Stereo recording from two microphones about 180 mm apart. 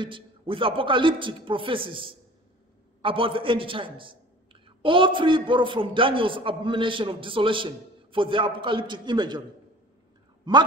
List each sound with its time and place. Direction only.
0.0 s a man's voice: 30° right (ahead or behind)